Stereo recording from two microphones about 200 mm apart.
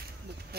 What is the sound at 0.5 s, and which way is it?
Speech, 55° right (ahead or behind).